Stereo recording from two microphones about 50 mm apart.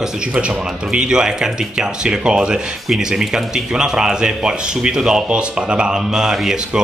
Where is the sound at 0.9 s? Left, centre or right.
Centre.